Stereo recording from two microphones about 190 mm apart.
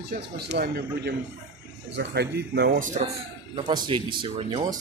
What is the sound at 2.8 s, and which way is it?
Speech, 40° right (ahead or behind).